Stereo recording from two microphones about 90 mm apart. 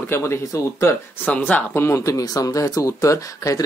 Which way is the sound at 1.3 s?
15° left (ahead or behind).